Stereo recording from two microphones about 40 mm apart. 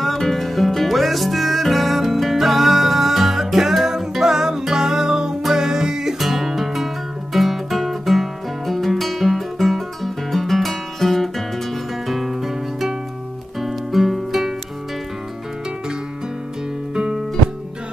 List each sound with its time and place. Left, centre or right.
0.0 s music: centre
12.1 s guitar: centre
13.6 s music: centre
16.9 s music: centre